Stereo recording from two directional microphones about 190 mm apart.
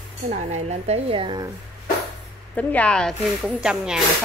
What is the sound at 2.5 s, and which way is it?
A woman's voice, 5° left (ahead or behind).